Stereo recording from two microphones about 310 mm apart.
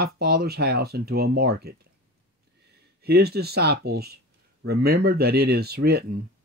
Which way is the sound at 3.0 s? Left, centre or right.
Right.